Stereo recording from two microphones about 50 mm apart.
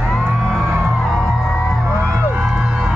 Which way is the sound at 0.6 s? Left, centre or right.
Right.